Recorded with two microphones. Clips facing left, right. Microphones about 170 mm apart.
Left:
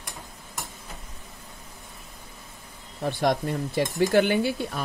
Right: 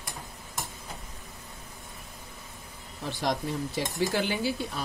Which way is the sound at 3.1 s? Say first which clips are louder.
Left 5 dB; 60° left (ahead or behind).